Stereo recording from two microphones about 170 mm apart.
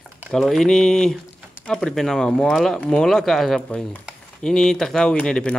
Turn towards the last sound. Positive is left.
turn(degrees=5)  # may be behind; listen again after turning